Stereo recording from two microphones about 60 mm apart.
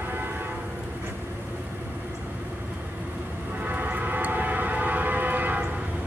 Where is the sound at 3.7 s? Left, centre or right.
Right.